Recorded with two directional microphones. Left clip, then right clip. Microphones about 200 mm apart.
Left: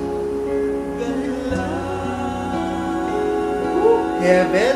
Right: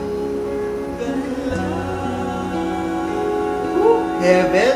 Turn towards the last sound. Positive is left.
turn(degrees=0)  # may be behind; listen again after turning